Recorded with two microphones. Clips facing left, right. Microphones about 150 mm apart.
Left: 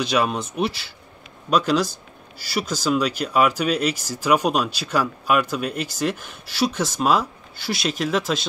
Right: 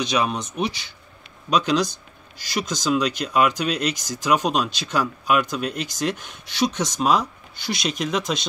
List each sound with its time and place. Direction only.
0.0 s speech: 5° left (ahead or behind)